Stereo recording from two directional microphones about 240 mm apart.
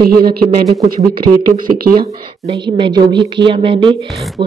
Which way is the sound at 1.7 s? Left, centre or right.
Right.